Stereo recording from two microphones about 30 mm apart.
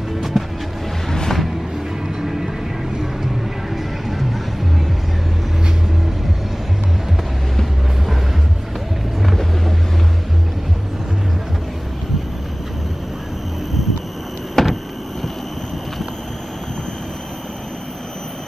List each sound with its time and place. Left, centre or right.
0.3 s music: centre
1.0 s music: centre
2.2 s vehicle: centre
3.7 s music: centre
9.2 s boat: centre
14.6 s vehicle: centre